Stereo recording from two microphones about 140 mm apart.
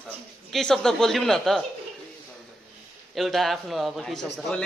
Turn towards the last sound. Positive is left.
turn(degrees=5)  # may be behind; listen again after turning